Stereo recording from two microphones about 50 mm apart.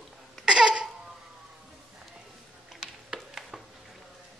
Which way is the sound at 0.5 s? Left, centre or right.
Centre.